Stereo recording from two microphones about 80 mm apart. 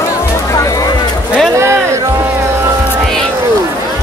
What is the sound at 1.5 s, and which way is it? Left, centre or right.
Music, right.